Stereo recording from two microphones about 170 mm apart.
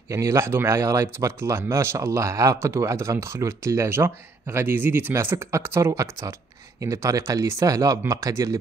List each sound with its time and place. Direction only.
0.1 s speech: 20° right (ahead or behind)